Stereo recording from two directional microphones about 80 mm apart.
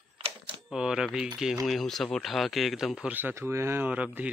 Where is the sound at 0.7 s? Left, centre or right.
Centre.